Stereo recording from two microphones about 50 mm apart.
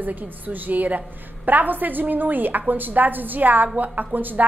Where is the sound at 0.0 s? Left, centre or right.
Right.